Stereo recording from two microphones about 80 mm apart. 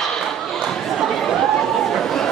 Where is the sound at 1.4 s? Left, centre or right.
Centre.